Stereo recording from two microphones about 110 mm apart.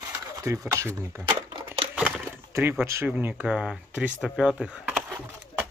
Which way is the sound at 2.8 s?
25° right (ahead or behind).